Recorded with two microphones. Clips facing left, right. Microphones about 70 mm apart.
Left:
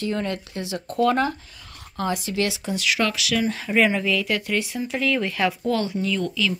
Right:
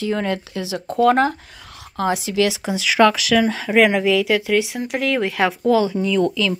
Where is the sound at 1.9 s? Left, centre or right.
Right.